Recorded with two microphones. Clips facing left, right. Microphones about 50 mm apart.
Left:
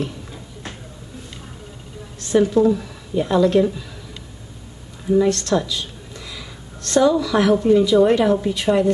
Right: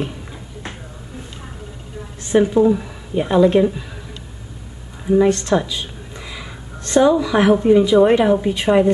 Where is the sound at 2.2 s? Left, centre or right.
Right.